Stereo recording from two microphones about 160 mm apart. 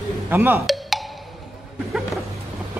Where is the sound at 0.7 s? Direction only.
Centre (ahead or behind).